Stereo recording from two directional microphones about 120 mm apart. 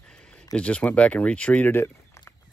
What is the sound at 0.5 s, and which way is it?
Speech, 10° left (ahead or behind).